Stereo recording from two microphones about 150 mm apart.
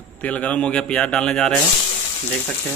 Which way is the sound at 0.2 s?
10° left (ahead or behind).